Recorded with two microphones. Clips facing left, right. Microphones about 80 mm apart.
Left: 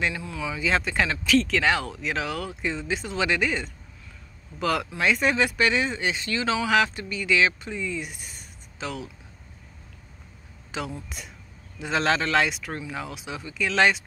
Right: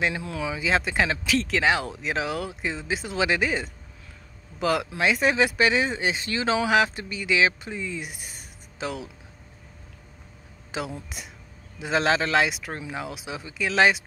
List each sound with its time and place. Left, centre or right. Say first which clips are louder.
0.1 s speech: right 2 dB; right
0.6 s speech: even; centre
10.7 s speech: right 1 dB; centre